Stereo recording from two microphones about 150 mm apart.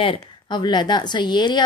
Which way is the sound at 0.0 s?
35° left (ahead or behind).